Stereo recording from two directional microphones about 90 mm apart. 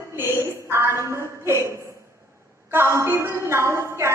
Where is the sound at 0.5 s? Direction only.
30° right (ahead or behind).